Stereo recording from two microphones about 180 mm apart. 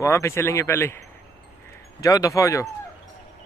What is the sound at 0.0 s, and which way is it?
Speech, 15° left (ahead or behind).